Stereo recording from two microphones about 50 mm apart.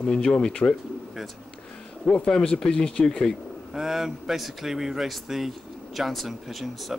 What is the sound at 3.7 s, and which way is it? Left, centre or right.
Speech, centre.